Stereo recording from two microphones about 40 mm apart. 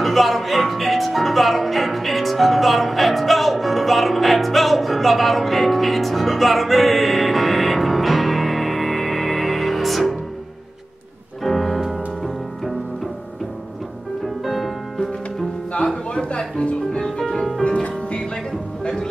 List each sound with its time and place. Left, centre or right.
0.0 s music: centre
11.4 s music: centre
14.2 s music: centre
15.7 s music: left